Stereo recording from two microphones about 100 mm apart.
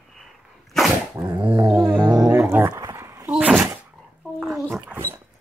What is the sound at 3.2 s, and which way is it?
Thunk, 15° right (ahead or behind).